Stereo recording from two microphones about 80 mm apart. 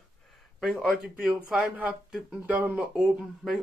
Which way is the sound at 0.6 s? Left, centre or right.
Centre.